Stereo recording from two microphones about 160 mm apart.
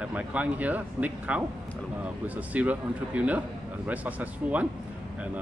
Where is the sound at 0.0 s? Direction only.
10° right (ahead or behind).